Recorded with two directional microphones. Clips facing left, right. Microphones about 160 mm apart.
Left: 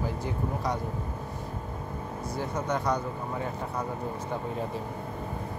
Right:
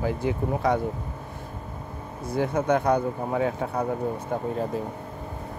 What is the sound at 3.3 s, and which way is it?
Speech, 80° right.